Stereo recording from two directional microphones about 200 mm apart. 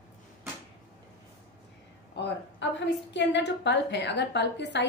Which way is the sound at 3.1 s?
60° left (ahead or behind).